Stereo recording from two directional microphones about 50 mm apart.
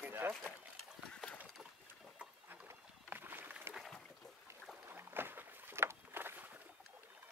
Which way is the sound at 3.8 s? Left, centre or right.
Centre.